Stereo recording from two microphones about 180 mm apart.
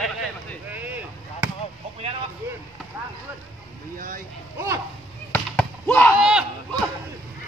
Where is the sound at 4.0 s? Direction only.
50° right (ahead or behind).